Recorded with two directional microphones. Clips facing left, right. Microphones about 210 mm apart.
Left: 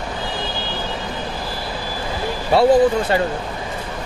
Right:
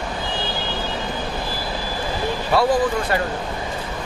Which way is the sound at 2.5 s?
25° left (ahead or behind).